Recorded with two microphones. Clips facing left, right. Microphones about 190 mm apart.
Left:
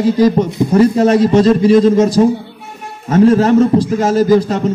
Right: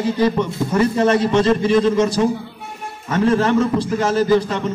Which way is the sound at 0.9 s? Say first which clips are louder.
Left 5 dB; 40° left (ahead or behind).